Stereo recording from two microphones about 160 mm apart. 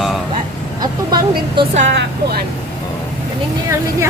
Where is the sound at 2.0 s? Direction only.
80° right.